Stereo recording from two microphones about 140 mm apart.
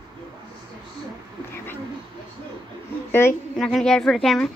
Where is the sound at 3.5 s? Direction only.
Centre (ahead or behind).